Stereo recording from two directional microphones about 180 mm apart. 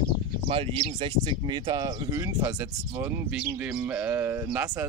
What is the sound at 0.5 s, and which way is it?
Speech, 30° right (ahead or behind).